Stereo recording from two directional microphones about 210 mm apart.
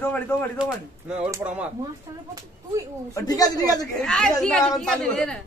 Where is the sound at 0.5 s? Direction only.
5° right (ahead or behind).